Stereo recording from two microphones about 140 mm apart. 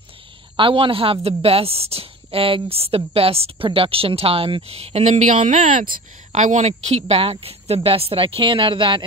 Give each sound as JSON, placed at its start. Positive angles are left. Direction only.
{"t": 0.6, "sound": "speech", "side_deg": -40}